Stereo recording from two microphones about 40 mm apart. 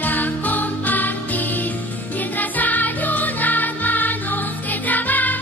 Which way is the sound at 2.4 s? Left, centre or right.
Left.